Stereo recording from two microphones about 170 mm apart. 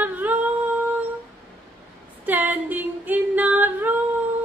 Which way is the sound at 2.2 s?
10° right (ahead or behind).